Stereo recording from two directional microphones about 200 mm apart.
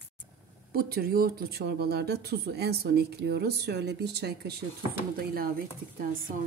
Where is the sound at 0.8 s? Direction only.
50° right (ahead or behind).